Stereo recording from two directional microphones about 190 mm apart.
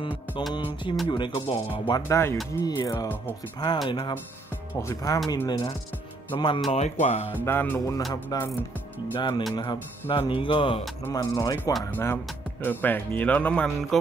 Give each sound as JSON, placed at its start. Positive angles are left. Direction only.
{"t": 0.1, "sound": "music", "side_deg": -5}
{"t": 1.0, "sound": "speech", "side_deg": 25}
{"t": 7.4, "sound": "speech", "side_deg": 10}